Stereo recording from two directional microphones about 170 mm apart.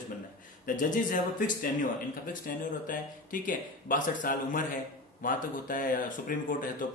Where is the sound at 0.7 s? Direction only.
50° left (ahead or behind).